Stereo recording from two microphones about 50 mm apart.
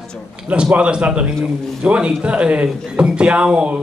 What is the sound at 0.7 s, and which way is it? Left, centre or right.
Speech, right.